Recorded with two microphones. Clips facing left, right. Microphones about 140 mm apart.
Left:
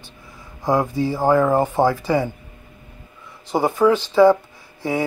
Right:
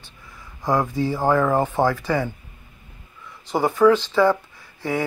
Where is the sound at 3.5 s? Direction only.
15° left (ahead or behind).